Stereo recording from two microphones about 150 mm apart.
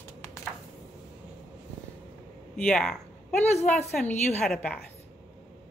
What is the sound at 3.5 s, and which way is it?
Speech, 45° left (ahead or behind).